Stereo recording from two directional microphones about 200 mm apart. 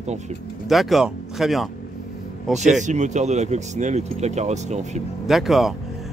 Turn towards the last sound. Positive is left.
turn(degrees=0)  # may be behind; listen again after turning